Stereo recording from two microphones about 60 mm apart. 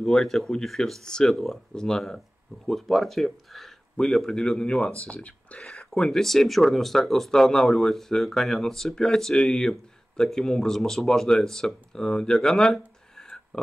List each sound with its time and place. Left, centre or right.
0.0 s speech: centre